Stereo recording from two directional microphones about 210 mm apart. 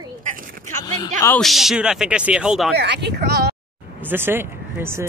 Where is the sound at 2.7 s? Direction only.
50° right (ahead or behind).